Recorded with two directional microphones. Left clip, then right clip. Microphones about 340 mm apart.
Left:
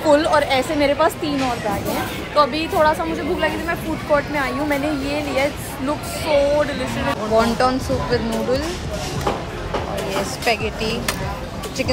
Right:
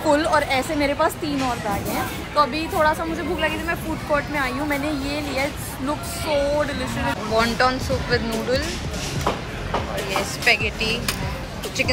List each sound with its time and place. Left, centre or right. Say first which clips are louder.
0.0 s a woman's voice: left 3 dB; centre
10.4 s a woman's voice: right 3 dB; centre